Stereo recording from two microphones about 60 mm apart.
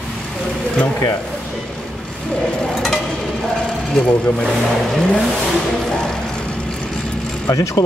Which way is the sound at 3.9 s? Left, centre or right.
Centre.